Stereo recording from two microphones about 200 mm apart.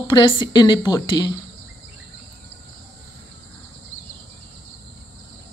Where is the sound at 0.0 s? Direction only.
20° left (ahead or behind).